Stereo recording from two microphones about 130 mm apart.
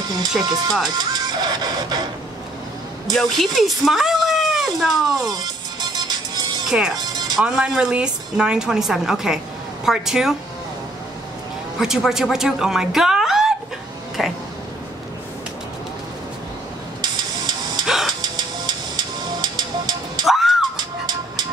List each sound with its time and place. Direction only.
0.4 s speech: 30° right (ahead or behind)
3.1 s speech: centre (ahead or behind)
5.3 s music: 35° right (ahead or behind)
6.7 s a woman's voice: 5° right (ahead or behind)
7.0 s music: 35° right (ahead or behind)
7.3 s a woman's voice: 5° right (ahead or behind)
11.8 s speech: 5° right (ahead or behind)
17.0 s hiss: 35° right (ahead or behind)
17.8 s a sound: 5° right (ahead or behind)
18.2 s music: 35° right (ahead or behind)
20.2 s music: centre (ahead or behind)
20.7 s music: 35° right (ahead or behind)